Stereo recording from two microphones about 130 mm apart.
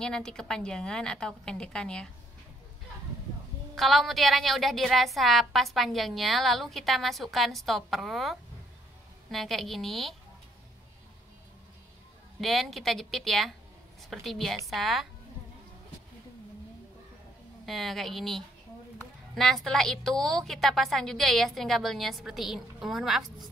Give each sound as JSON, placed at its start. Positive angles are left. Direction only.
{"t": 0.0, "sound": "a woman's voice", "side_deg": 5}
{"t": 3.7, "sound": "a woman's voice", "side_deg": 0}
{"t": 12.4, "sound": "a woman's voice", "side_deg": 0}
{"t": 17.6, "sound": "a woman's voice", "side_deg": 0}